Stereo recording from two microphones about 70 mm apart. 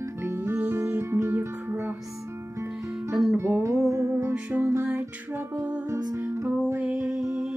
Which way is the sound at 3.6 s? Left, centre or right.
Right.